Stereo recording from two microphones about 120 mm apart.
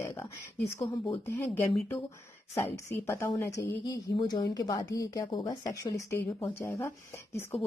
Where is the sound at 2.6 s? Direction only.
20° left (ahead or behind).